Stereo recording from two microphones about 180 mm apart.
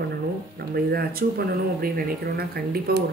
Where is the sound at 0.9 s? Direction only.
60° right (ahead or behind).